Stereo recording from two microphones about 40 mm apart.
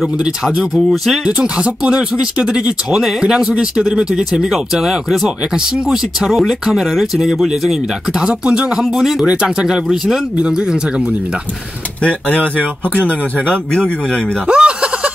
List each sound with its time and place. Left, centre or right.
1.2 s speech: right
2.9 s speech: centre
8.2 s speech: right
12.0 s speech: left
14.5 s speech: right